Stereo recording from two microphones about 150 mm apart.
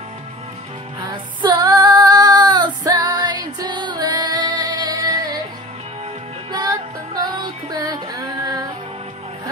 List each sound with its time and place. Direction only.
1.0 s female singing: 30° right (ahead or behind)
6.5 s music: 25° right (ahead or behind)